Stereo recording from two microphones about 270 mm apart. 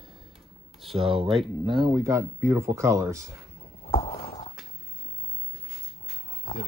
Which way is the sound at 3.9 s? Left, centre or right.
Left.